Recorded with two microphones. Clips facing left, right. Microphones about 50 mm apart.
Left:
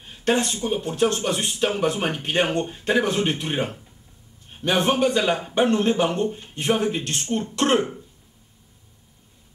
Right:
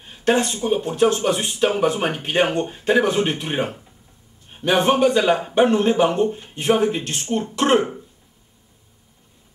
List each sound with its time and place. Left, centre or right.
0.0 s a man's voice: centre